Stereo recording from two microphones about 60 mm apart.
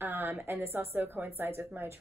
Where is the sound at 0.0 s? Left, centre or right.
Right.